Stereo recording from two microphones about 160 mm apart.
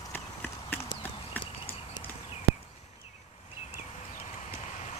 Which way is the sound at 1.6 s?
35° left (ahead or behind).